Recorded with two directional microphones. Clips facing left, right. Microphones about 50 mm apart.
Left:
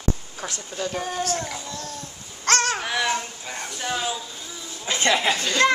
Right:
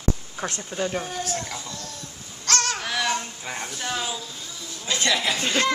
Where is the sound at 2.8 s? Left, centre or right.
Centre.